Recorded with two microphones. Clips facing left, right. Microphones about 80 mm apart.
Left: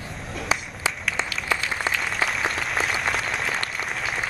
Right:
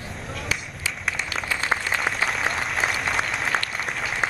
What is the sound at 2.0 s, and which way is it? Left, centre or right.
Applause, centre.